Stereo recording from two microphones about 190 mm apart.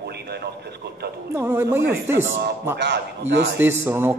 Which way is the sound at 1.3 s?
10° right (ahead or behind).